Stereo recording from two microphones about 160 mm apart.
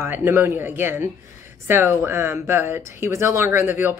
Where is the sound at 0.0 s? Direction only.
15° right (ahead or behind).